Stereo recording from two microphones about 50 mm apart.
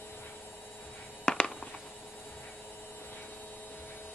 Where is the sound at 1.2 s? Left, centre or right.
Centre.